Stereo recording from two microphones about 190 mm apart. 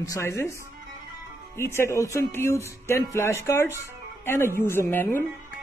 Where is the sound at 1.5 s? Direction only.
15° left (ahead or behind).